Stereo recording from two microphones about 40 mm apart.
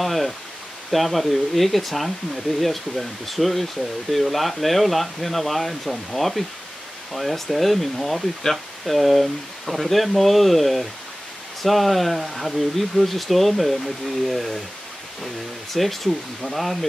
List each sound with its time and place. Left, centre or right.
0.0 s speech: centre
15.7 s speech: centre